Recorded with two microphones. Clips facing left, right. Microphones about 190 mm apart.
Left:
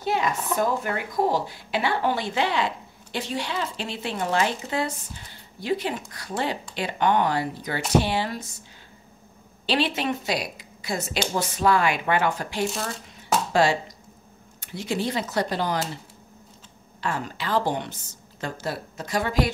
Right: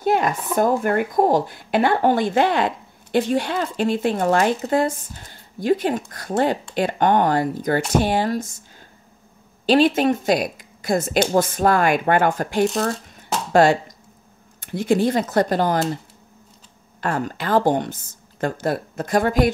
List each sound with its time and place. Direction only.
0.0 s speech: 50° right (ahead or behind)
9.7 s speech: 45° right (ahead or behind)
17.0 s speech: 50° right (ahead or behind)